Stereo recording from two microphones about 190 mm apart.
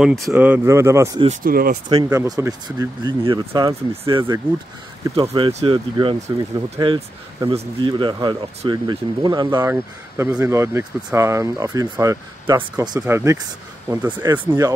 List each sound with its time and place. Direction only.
0.0 s speech: centre (ahead or behind)
0.3 s speech: 10° right (ahead or behind)
1.4 s speech: 50° right (ahead or behind)
1.9 s speech: 20° right (ahead or behind)
5.3 s speech: 30° right (ahead or behind)